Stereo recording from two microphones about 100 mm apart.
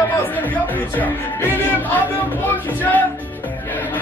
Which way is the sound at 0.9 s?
15° left (ahead or behind).